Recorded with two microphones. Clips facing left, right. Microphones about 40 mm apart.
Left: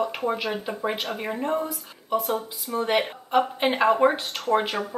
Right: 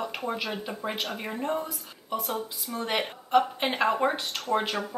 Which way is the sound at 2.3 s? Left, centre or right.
Left.